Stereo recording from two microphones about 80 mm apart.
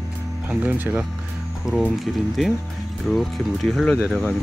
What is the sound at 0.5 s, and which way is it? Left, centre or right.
Speech, centre.